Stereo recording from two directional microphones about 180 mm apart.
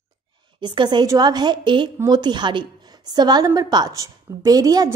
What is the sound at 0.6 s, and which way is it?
A woman's voice, 25° right (ahead or behind).